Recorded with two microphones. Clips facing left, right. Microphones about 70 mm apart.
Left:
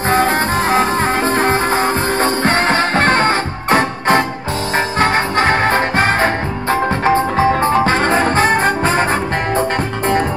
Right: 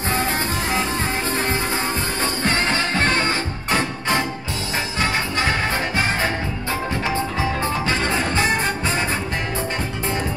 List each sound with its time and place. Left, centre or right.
0.1 s music: left